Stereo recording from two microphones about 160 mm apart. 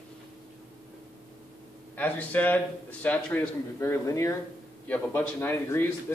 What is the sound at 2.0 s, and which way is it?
A man's voice, 10° left (ahead or behind).